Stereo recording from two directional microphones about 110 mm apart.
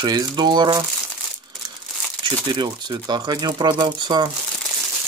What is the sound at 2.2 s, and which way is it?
Speech, 40° right (ahead or behind).